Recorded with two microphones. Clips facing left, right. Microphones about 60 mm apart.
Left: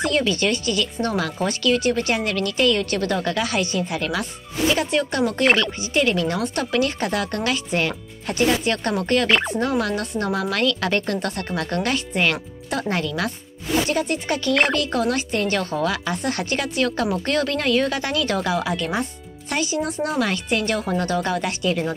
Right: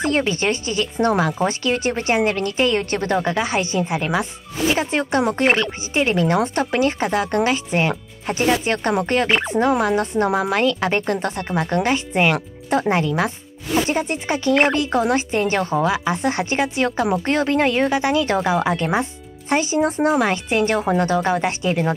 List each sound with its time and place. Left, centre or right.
0.0 s speech: right